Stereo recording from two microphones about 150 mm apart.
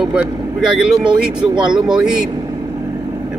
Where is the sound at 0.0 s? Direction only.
10° right (ahead or behind).